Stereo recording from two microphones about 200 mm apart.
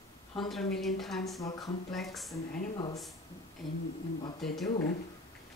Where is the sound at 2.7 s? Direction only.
20° left (ahead or behind).